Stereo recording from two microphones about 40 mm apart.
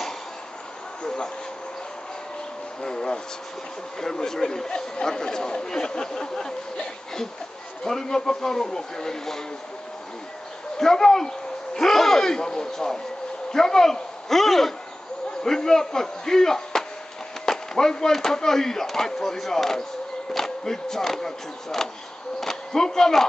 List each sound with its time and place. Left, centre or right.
1.0 s a sound: centre
2.8 s speech: centre
10.8 s a man's voice: centre